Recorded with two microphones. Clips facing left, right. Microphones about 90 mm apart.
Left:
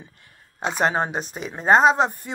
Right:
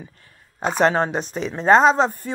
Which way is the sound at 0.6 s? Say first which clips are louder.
Right 4 dB; 45° right (ahead or behind).